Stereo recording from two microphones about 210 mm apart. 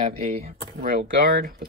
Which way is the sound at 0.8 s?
40° right (ahead or behind).